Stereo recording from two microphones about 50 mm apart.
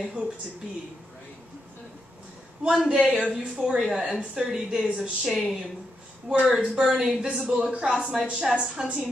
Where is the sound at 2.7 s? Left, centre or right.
Centre.